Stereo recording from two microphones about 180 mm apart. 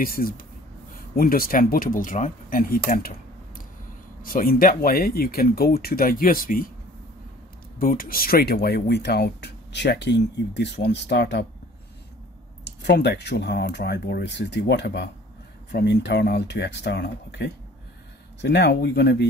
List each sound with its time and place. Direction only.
0.0 s speech: 55° left (ahead or behind)
7.8 s speech: 55° left (ahead or behind); by 11.4 s 70° left (ahead or behind)
12.6 s speech: 65° left (ahead or behind)